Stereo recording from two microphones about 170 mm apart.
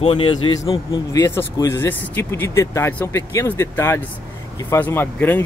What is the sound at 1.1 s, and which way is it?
Speech, 15° left (ahead or behind).